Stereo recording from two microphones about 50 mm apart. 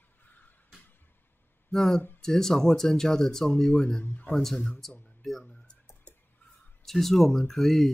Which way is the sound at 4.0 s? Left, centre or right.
Left.